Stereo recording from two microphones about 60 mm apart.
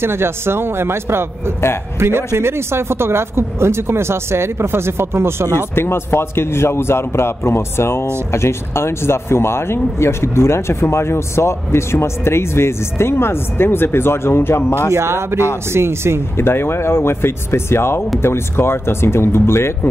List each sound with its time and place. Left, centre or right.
0.0 s speech: right
5.8 s speech: left
14.9 s speech: right
16.3 s speech: left